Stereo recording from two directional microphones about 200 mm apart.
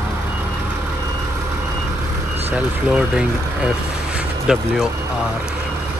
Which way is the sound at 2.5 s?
5° right (ahead or behind).